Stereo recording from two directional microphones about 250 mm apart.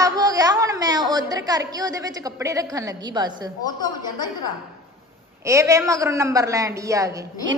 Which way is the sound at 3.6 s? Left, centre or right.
Centre.